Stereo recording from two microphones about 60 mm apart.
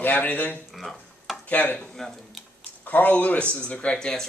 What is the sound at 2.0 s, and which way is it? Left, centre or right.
Speech, centre.